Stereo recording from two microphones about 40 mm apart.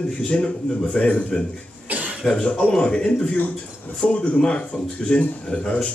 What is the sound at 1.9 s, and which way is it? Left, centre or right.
Cough, right.